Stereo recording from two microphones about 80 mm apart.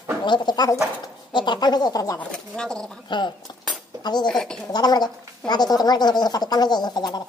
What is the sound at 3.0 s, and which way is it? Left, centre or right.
Speech, left.